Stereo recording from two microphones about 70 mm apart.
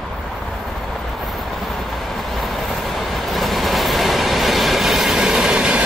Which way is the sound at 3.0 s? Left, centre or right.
Centre.